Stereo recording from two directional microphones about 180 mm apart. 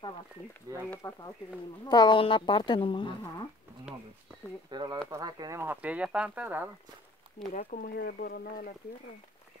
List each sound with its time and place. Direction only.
0.8 s speech: 10° left (ahead or behind)
4.6 s speech: 25° right (ahead or behind); by 6.7 s 10° right (ahead or behind)
7.5 s speech: 55° left (ahead or behind)